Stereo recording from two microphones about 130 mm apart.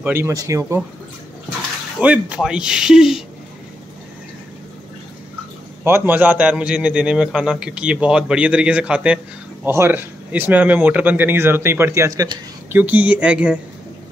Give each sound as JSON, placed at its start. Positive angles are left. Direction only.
{"t": 0.0, "sound": "speech", "side_deg": -20}
{"t": 2.0, "sound": "speech", "side_deg": -10}
{"t": 5.9, "sound": "a man's voice", "side_deg": -15}
{"t": 12.7, "sound": "a man's voice", "side_deg": -10}